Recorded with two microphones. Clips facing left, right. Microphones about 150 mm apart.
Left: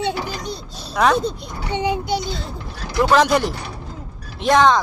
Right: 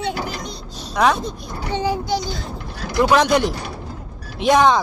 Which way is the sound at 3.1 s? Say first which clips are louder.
Left 1 dB; centre (ahead or behind).